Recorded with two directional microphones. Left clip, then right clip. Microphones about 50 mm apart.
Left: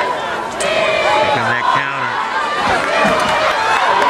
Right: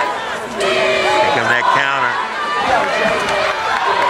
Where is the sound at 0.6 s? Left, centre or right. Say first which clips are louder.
Even; centre.